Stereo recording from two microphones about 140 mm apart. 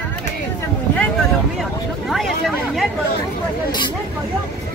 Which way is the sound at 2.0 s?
Centre (ahead or behind).